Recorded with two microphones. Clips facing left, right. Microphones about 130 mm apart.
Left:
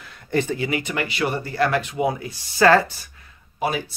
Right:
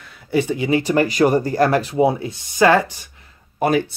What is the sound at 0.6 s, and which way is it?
Speech, 30° right (ahead or behind).